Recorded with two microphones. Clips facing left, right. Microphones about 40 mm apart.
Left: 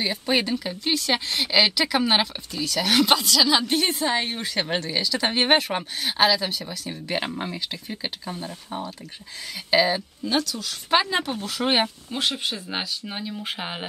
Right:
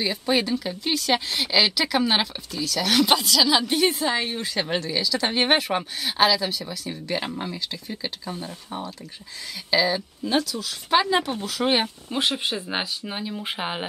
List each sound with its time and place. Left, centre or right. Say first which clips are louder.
0.0 s speech: even; centre
0.7 s speech: right 1 dB; centre
3.1 s speech: even; centre
4.0 s speech: even; centre
7.1 s speech: left 1 dB; left
8.3 s speech: even; centre
9.7 s speech: left 1 dB; centre
10.2 s speech: right 1 dB; centre
10.9 s speech: right 1 dB; centre
12.2 s speech: right 2 dB; centre